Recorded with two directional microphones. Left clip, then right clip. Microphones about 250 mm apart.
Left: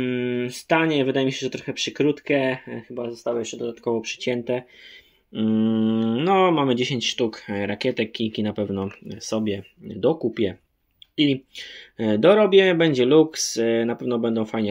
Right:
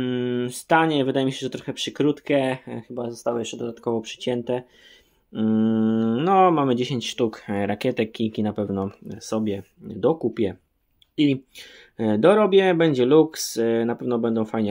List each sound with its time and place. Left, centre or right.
0.0 s speech: centre